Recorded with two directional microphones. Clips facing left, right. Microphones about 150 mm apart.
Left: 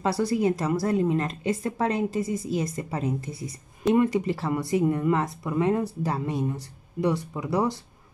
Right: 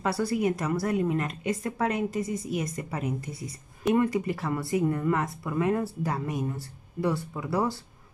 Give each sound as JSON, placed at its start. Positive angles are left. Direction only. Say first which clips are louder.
{"t": 0.3, "sound": "speech", "louder": "left 3 dB", "side_deg": 30}